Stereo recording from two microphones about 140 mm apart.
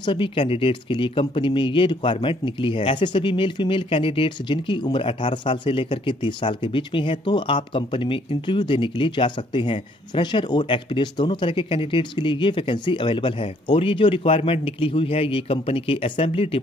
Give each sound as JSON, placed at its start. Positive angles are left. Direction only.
{"t": 0.0, "sound": "speech", "side_deg": 35}